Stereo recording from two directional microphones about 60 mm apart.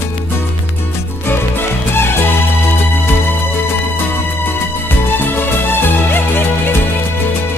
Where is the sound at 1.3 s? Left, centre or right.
Left.